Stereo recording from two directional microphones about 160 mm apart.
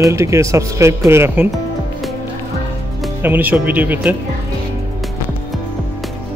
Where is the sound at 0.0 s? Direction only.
20° right (ahead or behind).